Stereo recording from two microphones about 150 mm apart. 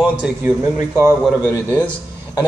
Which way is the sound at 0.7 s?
15° right (ahead or behind).